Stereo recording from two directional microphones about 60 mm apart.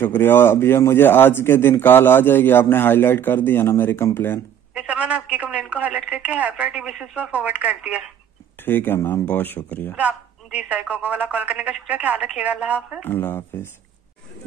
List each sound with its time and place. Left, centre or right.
0.0 s a man's voice: left
4.7 s speech: right
8.6 s a man's voice: left
9.9 s speech: right
13.0 s a man's voice: left